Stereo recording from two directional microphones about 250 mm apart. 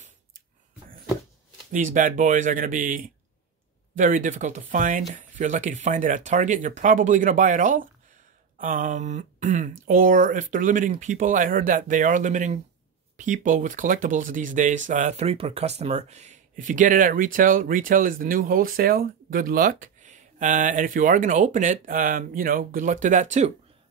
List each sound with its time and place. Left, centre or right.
2.0 s speech: right
8.5 s a sound: right
9.8 s speech: right